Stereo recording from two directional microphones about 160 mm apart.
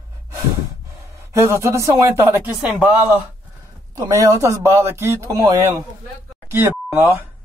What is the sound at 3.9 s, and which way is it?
Speech, 20° right (ahead or behind).